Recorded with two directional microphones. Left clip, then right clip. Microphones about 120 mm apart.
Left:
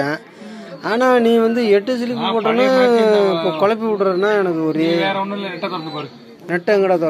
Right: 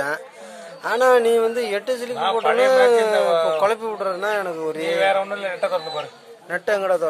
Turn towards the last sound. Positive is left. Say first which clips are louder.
# left 5 dB
turn(degrees=-10)  # may be behind; listen again after turning